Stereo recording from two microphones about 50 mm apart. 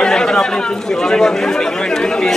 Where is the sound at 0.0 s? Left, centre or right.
Centre.